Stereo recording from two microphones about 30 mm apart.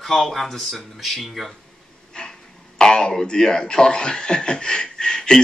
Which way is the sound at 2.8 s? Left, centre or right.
Left.